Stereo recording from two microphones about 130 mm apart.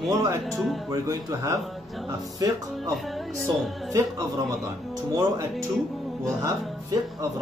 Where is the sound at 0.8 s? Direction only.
25° right (ahead or behind).